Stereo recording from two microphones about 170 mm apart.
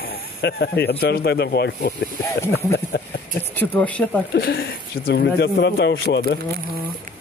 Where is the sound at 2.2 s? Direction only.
15° left (ahead or behind).